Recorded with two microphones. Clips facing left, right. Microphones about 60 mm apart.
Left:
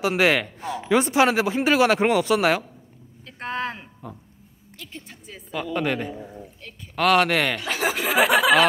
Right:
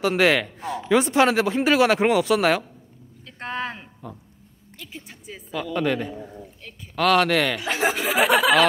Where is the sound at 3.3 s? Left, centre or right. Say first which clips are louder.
Left 1 dB; centre.